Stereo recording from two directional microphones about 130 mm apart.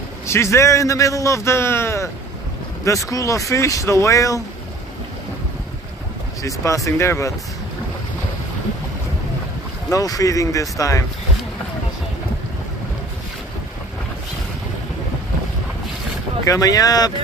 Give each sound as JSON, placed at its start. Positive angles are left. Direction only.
{"t": 0.3, "sound": "a man's voice", "side_deg": 20}
{"t": 6.4, "sound": "a man's voice", "side_deg": 25}
{"t": 9.8, "sound": "a man's voice", "side_deg": 25}
{"t": 16.4, "sound": "a man's voice", "side_deg": 30}